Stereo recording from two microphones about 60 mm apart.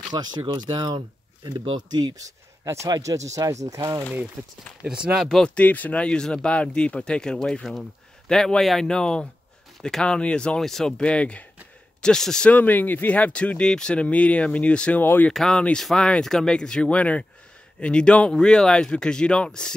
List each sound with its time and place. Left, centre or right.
0.5 s speech: right
2.0 s speech: right
4.4 s speech: right
4.8 s speech: centre
5.4 s speech: left
6.0 s speech: centre
10.0 s speech: centre
10.6 s speech: centre
11.0 s speech: centre
12.4 s speech: left
15.0 s speech: left
15.3 s speech: centre